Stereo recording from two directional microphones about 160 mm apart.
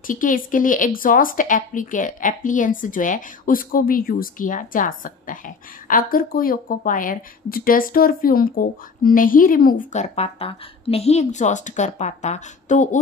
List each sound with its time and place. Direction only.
0.0 s a woman's voice: 55° left (ahead or behind)